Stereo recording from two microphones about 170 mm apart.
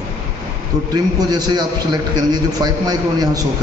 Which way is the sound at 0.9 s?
25° right (ahead or behind).